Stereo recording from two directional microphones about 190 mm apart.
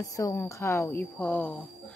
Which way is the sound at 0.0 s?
15° left (ahead or behind).